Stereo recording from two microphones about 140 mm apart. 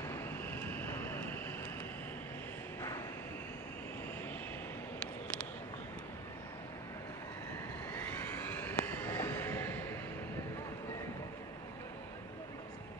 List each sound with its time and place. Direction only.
0.1 s vehicle: 15° left (ahead or behind)
7.9 s vehicle: 15° left (ahead or behind)